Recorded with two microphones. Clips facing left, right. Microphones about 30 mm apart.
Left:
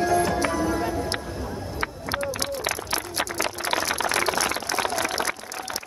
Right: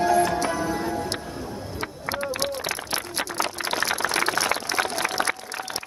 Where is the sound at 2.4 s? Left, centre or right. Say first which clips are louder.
Even; centre.